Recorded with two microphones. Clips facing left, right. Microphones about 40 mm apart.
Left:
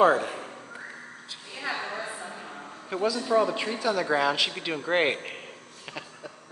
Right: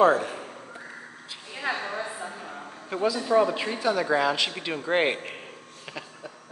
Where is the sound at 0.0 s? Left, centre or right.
Centre.